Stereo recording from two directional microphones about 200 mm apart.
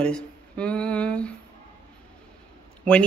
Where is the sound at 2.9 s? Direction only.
5° left (ahead or behind).